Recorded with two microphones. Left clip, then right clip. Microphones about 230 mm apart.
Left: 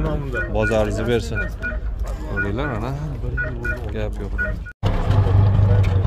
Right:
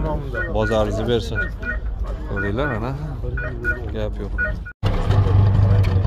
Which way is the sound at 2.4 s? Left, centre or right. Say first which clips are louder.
Right 2 dB; centre.